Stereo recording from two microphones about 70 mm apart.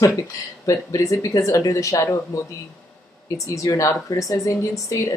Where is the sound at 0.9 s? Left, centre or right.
Left.